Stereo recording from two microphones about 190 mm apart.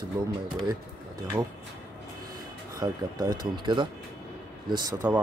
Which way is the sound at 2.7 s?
20° right (ahead or behind).